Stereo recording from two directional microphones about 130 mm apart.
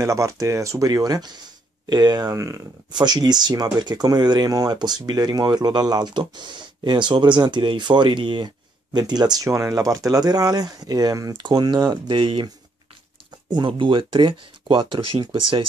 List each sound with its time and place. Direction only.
0.0 s speech: 25° right (ahead or behind); by 12.4 s 40° right (ahead or behind)
13.5 s speech: 35° right (ahead or behind)